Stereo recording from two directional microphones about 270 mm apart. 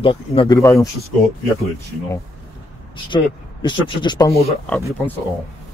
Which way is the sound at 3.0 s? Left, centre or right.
Centre.